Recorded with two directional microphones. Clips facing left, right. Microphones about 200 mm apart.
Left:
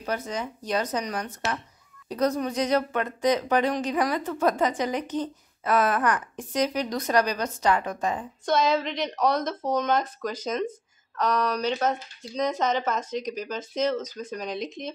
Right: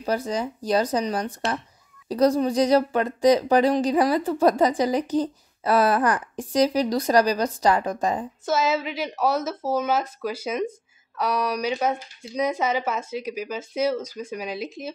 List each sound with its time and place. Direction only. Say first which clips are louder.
0.0 s speech: right 5 dB; 35° right (ahead or behind)
8.5 s speech: even; 5° right (ahead or behind)